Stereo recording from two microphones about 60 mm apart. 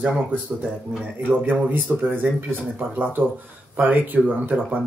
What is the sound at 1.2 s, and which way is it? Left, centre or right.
Speech, right.